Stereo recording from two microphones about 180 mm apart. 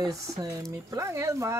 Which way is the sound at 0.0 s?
20° right (ahead or behind).